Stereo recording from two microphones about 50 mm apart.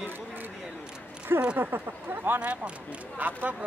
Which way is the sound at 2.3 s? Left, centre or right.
Right.